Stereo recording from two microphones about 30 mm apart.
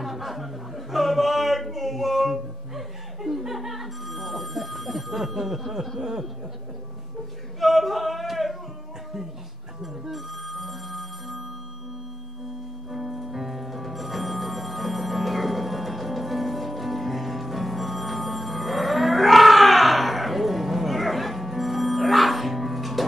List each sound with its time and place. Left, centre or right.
0.0 s music: centre
5.9 s speech: centre
7.6 s a sound: centre
10.1 s music: centre
12.9 s music: centre